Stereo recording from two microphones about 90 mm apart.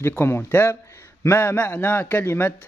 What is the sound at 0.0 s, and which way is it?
A man's voice, 25° left (ahead or behind).